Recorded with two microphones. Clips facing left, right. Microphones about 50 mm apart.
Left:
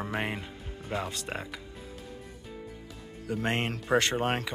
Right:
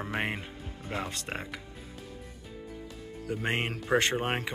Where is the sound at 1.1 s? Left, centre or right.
Right.